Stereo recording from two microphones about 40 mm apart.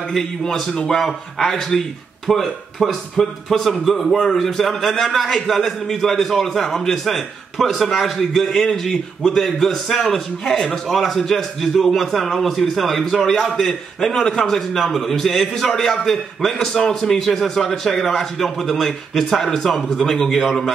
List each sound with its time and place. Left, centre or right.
0.1 s a man's voice: centre